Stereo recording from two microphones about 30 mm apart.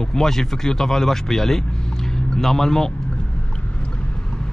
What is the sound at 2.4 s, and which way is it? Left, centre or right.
Speech, centre.